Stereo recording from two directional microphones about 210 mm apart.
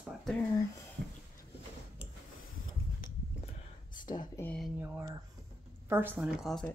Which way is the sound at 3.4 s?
40° left (ahead or behind).